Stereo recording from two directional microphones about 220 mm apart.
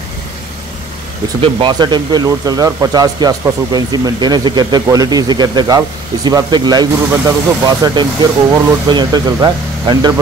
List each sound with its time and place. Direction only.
1.4 s speech: 20° right (ahead or behind)